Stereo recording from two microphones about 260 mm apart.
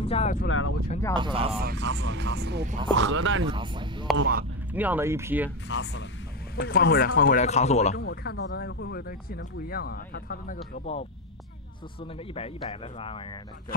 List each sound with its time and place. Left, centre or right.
0.0 s speech: left
0.5 s speech: left
1.1 s speech: centre
1.6 s speech: right
2.6 s speech: right
3.0 s speech: right
3.4 s speech: centre
4.2 s speech: right
4.7 s speech: centre
5.7 s speech: left
8.0 s speech: left